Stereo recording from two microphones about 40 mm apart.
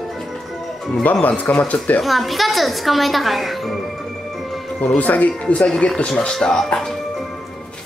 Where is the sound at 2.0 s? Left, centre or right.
Centre.